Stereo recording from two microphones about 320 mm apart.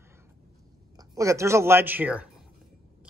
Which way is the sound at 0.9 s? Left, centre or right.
Centre.